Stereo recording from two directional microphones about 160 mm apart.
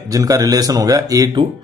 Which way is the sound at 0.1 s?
20° right (ahead or behind).